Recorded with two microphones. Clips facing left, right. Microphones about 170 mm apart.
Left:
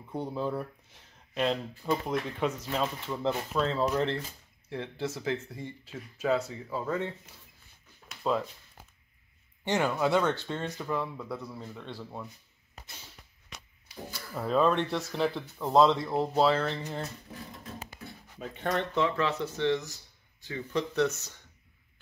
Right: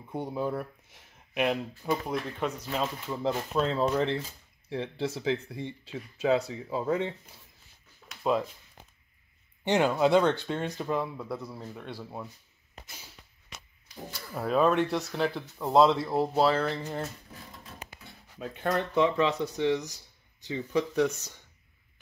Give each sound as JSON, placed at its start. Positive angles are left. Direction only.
{"t": 0.1, "sound": "speech", "side_deg": -15}
{"t": 1.8, "sound": "speech", "side_deg": -5}
{"t": 3.5, "sound": "speech", "side_deg": -15}
{"t": 8.2, "sound": "speech", "side_deg": -15}
{"t": 9.7, "sound": "speech", "side_deg": -20}
{"t": 14.4, "sound": "speech", "side_deg": -10}
{"t": 18.4, "sound": "speech", "side_deg": 0}
{"t": 18.9, "sound": "speech", "side_deg": -20}